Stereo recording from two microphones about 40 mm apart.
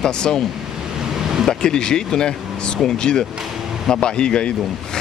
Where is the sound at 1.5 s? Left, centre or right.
Centre.